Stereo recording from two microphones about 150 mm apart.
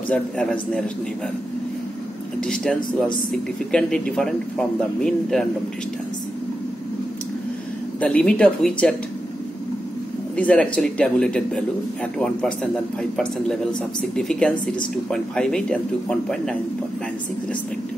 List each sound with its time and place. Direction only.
0.1 s speech: 5° left (ahead or behind)
2.4 s speech: 5° left (ahead or behind)
8.0 s speech: 5° left (ahead or behind)
10.3 s speech: 10° left (ahead or behind)